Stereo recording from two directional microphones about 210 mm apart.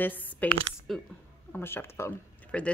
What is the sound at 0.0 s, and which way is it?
A woman's voice, 10° left (ahead or behind).